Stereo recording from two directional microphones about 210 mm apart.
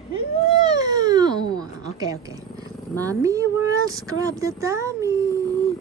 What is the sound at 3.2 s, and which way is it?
Speech, 15° right (ahead or behind).